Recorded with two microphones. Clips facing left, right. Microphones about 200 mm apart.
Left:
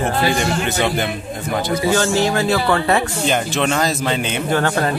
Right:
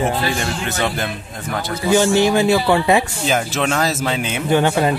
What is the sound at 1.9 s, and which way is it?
A man's voice, 20° right (ahead or behind).